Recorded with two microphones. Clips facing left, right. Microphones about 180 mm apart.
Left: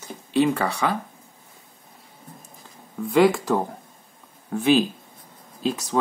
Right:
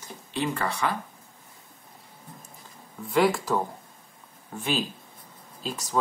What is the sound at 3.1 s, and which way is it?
Speech, 65° left (ahead or behind).